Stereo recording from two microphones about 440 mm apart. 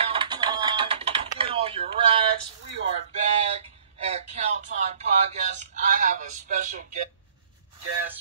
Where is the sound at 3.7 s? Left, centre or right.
Centre.